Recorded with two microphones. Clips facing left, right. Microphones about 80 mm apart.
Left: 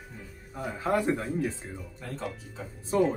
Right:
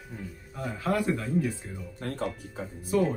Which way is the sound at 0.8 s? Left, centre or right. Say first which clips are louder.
Left 1 dB; left.